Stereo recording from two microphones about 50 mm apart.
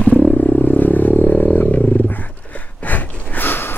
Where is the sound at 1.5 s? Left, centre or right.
Left.